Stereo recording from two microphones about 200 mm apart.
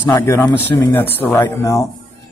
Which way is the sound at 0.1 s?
15° left (ahead or behind).